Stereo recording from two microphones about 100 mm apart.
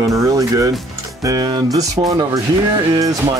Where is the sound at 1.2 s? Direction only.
40° right (ahead or behind).